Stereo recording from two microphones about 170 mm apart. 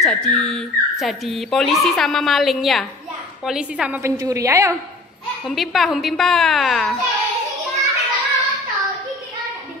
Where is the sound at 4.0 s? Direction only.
20° right (ahead or behind).